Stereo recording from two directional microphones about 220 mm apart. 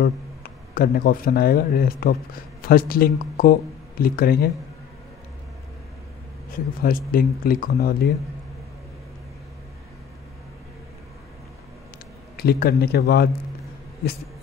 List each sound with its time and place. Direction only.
0.0 s speech: 45° left (ahead or behind)
6.5 s speech: 40° left (ahead or behind)
12.4 s speech: 45° left (ahead or behind)